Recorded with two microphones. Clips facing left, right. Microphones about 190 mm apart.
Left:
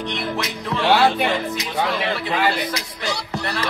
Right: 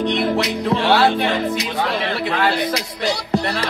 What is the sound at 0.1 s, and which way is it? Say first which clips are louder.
Music: right 7 dB; 35° right (ahead or behind).